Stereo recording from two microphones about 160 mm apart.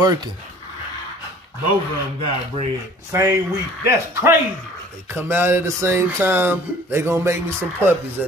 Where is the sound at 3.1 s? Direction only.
20° right (ahead or behind).